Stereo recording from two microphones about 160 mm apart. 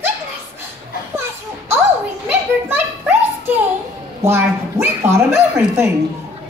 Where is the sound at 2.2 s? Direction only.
15° right (ahead or behind).